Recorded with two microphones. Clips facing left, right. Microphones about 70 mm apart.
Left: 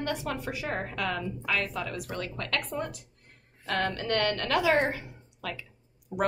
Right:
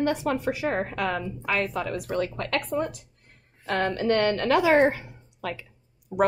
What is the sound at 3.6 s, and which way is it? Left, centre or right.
A woman's voice, right.